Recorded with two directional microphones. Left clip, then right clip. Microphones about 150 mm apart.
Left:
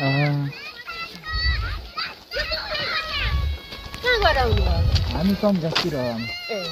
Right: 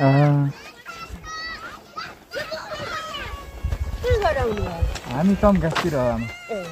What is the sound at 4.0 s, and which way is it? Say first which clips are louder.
Clip-clop: left 2 dB; 5° right (ahead or behind).